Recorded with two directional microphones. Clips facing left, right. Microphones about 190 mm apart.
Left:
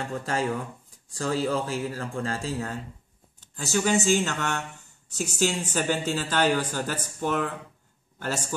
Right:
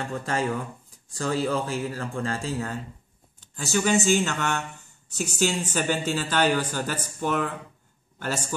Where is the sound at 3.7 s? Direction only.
30° left (ahead or behind).